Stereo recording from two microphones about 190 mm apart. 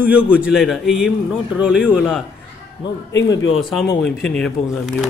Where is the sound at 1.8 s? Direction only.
10° left (ahead or behind).